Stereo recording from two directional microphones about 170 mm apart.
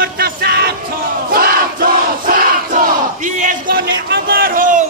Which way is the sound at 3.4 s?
55° right (ahead or behind).